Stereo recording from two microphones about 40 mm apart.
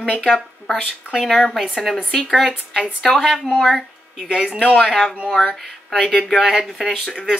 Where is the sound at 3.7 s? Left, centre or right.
Centre.